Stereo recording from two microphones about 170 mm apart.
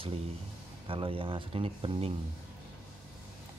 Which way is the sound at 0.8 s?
30° right (ahead or behind).